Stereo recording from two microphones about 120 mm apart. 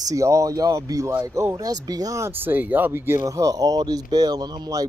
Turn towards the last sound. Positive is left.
turn(degrees=-35)  # may be behind; listen again after turning